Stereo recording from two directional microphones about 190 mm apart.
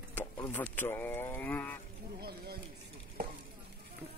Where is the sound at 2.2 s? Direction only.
55° right (ahead or behind).